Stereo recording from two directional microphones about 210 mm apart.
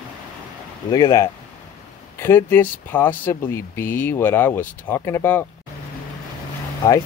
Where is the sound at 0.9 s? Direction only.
15° left (ahead or behind).